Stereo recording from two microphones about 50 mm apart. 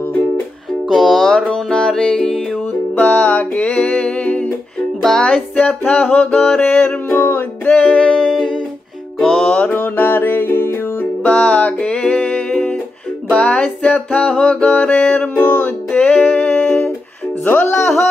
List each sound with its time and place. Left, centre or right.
0.8 s music: centre
3.0 s music: left
5.0 s music: centre
5.3 s music: left
7.1 s music: left
7.6 s music: left
8.3 s music: centre
9.5 s music: left
11.2 s music: left
16.4 s music: left